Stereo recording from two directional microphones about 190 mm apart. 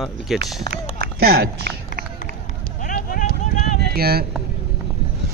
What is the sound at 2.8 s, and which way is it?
Vehicle, 50° left (ahead or behind).